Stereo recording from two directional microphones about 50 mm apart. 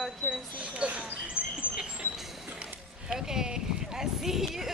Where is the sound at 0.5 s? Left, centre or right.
Right.